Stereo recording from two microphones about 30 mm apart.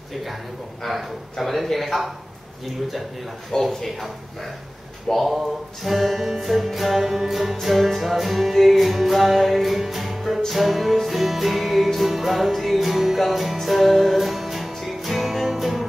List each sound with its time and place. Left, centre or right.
1.4 s music: centre
3.5 s speech: centre
5.1 s music: centre